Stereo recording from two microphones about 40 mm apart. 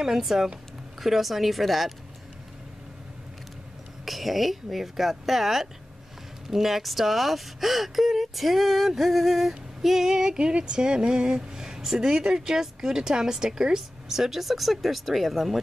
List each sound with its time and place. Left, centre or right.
0.0 s speech: centre
4.0 s speech: centre
10.3 s a woman's voice: right; by 15.6 s centre